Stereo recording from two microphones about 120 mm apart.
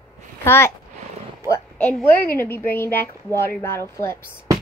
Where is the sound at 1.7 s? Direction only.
15° left (ahead or behind).